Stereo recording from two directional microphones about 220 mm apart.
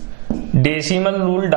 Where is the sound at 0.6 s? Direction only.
10° right (ahead or behind).